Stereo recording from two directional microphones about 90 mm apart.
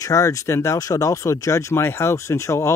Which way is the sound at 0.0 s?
40° left (ahead or behind).